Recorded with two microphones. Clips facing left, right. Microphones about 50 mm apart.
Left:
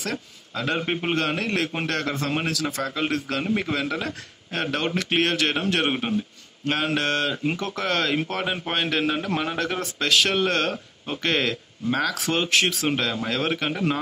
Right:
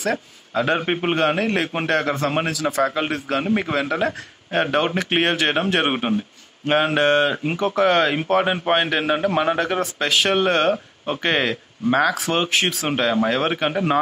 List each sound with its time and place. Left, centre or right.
0.1 s a man's voice: right
2.8 s a man's voice: right
12.9 s a man's voice: centre